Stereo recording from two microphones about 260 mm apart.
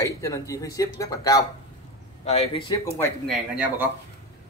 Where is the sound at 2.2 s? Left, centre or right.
Left.